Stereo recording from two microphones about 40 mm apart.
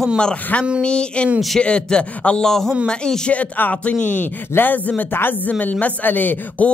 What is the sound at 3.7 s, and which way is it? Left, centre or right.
Speech, left.